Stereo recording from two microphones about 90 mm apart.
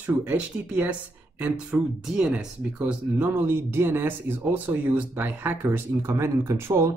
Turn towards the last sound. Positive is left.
turn(degrees=-30)  # may be behind; listen again after turning